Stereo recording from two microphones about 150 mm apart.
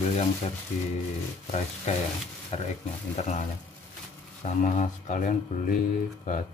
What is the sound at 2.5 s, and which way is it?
Speech, 45° left (ahead or behind).